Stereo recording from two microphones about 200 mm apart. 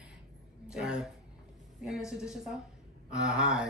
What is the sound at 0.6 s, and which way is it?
Speech, 5° right (ahead or behind).